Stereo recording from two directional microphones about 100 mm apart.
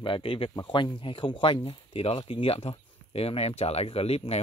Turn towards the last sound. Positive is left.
turn(degrees=85)